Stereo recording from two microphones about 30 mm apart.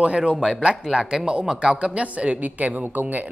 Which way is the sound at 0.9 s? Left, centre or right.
Right.